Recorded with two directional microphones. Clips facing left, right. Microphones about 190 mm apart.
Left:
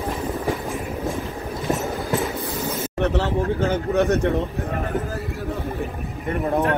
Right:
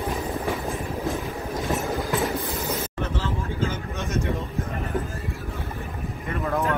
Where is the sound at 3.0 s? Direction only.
65° left (ahead or behind).